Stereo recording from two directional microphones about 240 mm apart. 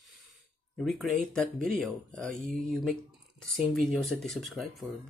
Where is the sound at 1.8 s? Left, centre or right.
Centre.